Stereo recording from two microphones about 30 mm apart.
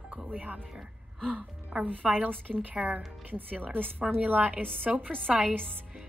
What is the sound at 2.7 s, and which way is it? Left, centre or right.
Speech, right.